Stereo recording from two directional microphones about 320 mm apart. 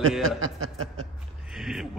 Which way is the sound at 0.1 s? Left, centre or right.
Centre.